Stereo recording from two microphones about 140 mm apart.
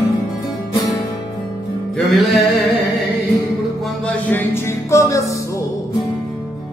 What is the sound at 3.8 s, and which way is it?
Music, 5° left (ahead or behind).